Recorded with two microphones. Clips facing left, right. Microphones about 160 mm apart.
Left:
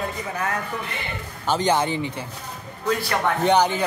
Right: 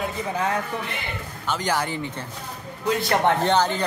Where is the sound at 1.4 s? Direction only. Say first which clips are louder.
Left 4 dB; 25° left (ahead or behind).